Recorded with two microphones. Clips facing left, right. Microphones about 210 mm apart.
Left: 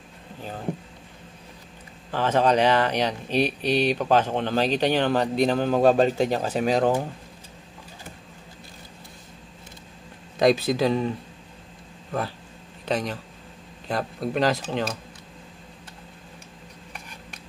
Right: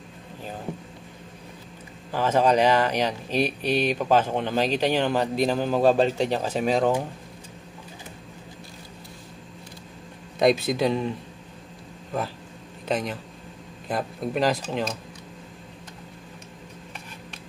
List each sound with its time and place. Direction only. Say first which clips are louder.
2.1 s a man's voice: even; 10° right (ahead or behind)
10.7 s a man's voice: left 1 dB; centre (ahead or behind)
12.8 s a man's voice: even; 5° right (ahead or behind)